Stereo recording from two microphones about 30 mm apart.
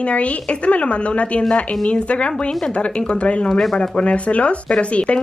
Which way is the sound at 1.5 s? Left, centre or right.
Left.